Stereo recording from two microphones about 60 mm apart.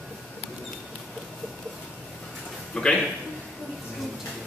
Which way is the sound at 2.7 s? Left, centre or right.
Centre.